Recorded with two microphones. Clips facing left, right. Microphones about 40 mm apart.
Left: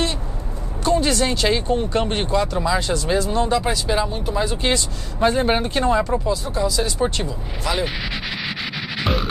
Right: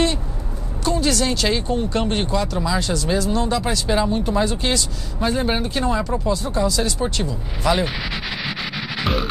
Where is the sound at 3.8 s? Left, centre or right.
Centre.